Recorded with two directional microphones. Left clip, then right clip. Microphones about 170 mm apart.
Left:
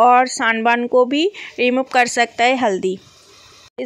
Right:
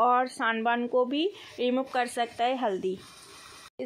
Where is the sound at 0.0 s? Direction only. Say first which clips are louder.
Left 12 dB; 40° left (ahead or behind).